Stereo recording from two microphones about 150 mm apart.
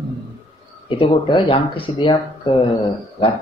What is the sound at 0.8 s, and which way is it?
Speech, 35° left (ahead or behind).